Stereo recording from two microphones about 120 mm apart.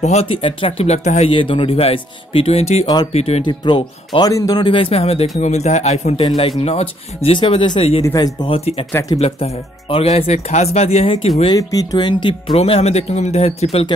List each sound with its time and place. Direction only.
0.0 s speech: 60° left (ahead or behind)
1.3 s speech: 45° left (ahead or behind)
3.4 s speech: 40° left (ahead or behind)
4.3 s speech: 30° left (ahead or behind)
4.6 s speech: 50° left (ahead or behind)
5.4 s a man's voice: 70° left (ahead or behind)
6.6 s speech: 55° left (ahead or behind)
8.0 s speech: 30° left (ahead or behind)
8.5 s speech: 55° left (ahead or behind)
11.4 s speech: 30° left (ahead or behind); by 13.8 s 60° left (ahead or behind)